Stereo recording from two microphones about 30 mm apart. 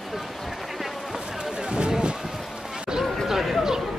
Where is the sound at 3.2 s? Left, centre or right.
Centre.